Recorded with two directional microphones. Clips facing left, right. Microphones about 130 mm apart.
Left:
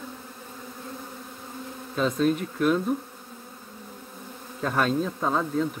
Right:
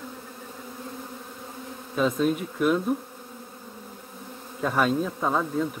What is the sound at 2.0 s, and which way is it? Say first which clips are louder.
Speech: even; 10° right (ahead or behind).